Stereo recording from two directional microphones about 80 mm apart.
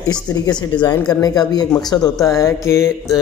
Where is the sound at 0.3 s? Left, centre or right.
Left.